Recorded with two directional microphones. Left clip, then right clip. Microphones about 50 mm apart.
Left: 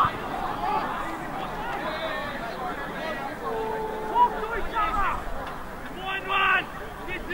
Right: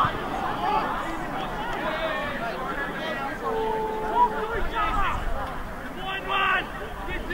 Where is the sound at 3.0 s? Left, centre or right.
Right.